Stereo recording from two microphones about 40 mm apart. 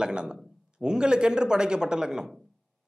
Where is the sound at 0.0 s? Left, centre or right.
Right.